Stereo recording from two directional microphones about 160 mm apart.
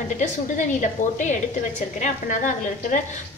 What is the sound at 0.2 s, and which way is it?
Speech, 50° left (ahead or behind).